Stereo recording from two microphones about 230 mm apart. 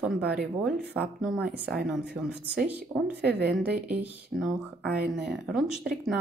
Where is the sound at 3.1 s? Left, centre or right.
Right.